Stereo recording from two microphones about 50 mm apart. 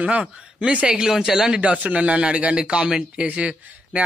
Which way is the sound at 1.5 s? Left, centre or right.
Right.